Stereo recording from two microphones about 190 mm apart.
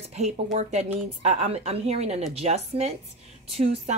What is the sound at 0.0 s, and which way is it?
A woman's voice, 35° right (ahead or behind).